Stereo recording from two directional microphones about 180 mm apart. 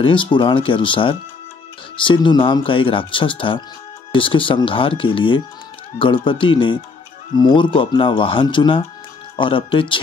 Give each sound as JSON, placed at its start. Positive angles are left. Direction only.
{"t": 0.0, "sound": "speech", "side_deg": 30}